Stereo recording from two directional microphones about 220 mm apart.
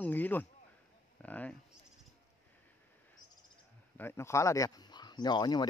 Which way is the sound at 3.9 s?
10° left (ahead or behind).